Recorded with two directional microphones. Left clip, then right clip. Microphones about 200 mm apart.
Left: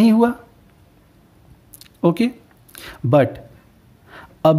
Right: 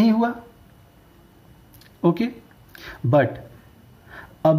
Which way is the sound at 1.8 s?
40° left (ahead or behind).